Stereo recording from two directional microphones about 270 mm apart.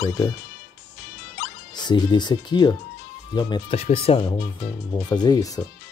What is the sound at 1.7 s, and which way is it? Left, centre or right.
Speech, centre.